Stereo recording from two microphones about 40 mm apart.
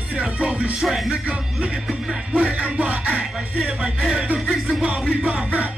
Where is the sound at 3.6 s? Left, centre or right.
Right.